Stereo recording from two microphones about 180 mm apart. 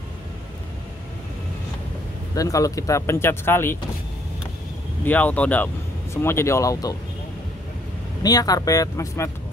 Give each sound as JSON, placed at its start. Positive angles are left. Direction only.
{"t": 2.3, "sound": "speech", "side_deg": 20}
{"t": 5.0, "sound": "speech", "side_deg": 10}
{"t": 8.2, "sound": "speech", "side_deg": 20}